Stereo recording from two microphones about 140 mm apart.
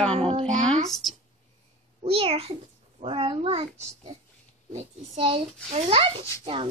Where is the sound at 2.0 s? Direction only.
45° right (ahead or behind).